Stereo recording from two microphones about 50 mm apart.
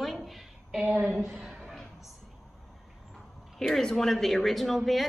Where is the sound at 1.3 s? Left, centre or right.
Centre.